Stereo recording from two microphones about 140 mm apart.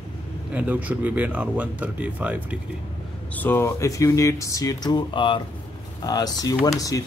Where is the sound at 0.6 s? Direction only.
10° right (ahead or behind).